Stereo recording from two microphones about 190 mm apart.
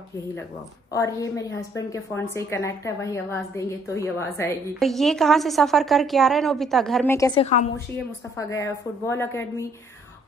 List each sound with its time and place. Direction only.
0.9 s a woman's voice: 15° left (ahead or behind)
4.7 s a woman's voice: centre (ahead or behind)
7.1 s a woman's voice: 15° left (ahead or behind)
7.3 s a woman's voice: 35° left (ahead or behind)
8.4 s a woman's voice: 15° left (ahead or behind)